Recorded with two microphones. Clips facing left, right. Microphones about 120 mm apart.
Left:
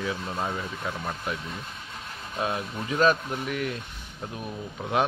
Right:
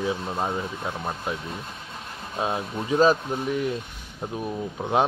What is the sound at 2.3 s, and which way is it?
A man's voice, 25° right (ahead or behind).